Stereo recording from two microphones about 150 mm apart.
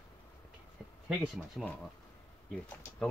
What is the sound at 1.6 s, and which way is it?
Speech, 10° left (ahead or behind).